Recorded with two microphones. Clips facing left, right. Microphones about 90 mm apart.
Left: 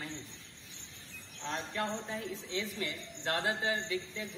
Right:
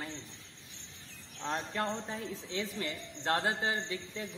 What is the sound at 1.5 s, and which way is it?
A man's voice, 40° right (ahead or behind).